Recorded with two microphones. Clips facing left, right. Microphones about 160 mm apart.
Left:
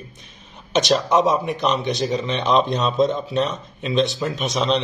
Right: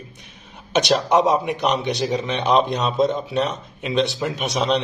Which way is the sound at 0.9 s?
20° right (ahead or behind).